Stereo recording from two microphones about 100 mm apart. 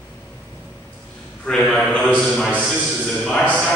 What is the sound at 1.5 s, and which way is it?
A man's voice, 5° left (ahead or behind).